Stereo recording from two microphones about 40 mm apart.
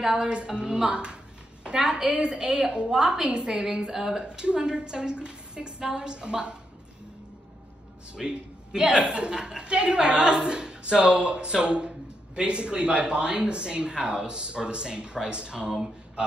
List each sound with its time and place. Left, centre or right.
0.0 s a woman's voice: centre
1.8 s a woman's voice: centre
2.0 s a woman's voice: right
4.3 s speech: right
8.2 s a woman's voice: centre
8.8 s speech: right